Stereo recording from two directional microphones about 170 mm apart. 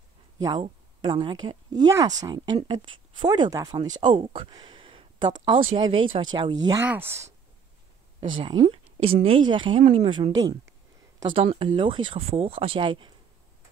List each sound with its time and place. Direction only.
0.6 s speech: 30° right (ahead or behind)
6.8 s speech: 10° right (ahead or behind)
8.2 s a woman's voice: 30° right (ahead or behind)